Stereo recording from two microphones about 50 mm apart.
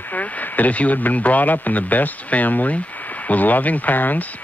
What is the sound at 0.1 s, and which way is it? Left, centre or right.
Speech, left.